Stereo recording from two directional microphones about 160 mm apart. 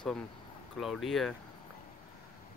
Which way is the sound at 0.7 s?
Centre (ahead or behind).